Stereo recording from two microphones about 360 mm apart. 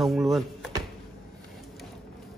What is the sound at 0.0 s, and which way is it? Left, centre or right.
Speech, centre.